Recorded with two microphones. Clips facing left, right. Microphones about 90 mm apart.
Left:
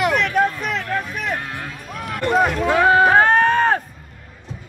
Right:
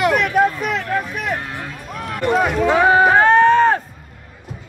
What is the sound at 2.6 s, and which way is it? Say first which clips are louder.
Speech: right 2 dB; 15° right (ahead or behind).